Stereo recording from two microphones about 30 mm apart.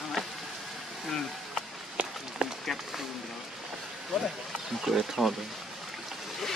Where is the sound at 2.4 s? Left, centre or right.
Right.